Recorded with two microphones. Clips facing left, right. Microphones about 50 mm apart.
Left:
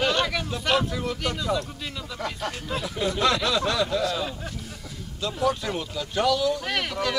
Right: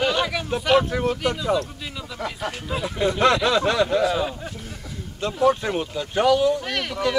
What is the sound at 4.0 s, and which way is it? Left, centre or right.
Speech, centre.